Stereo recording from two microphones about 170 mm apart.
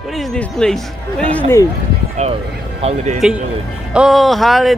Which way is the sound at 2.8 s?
40° right (ahead or behind).